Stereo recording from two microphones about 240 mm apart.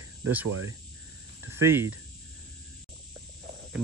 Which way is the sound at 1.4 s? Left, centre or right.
Centre.